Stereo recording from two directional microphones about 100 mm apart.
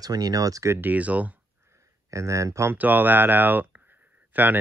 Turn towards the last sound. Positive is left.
turn(degrees=-15)  # may be behind; listen again after turning